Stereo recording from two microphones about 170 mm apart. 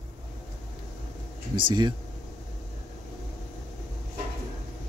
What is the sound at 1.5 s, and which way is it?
Speech, 25° right (ahead or behind).